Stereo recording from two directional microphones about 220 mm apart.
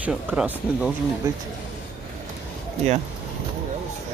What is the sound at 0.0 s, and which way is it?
Speech, 5° right (ahead or behind).